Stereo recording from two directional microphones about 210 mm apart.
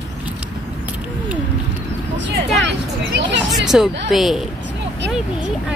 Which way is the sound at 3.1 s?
55° right (ahead or behind).